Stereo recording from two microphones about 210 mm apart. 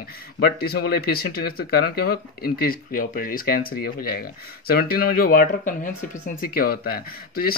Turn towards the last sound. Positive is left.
turn(degrees=45)  # may be behind; listen again after turning